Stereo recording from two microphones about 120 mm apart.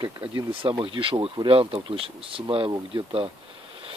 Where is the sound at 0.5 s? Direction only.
45° right (ahead or behind).